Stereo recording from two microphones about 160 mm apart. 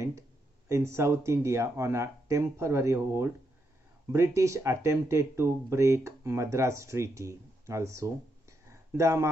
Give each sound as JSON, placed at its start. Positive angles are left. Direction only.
{"t": 0.7, "sound": "speech", "side_deg": -15}